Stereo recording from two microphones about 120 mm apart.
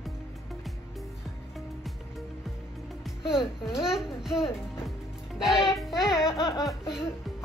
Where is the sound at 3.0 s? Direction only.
5° right (ahead or behind).